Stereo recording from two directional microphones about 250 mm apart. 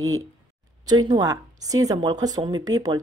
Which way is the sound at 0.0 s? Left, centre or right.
Centre.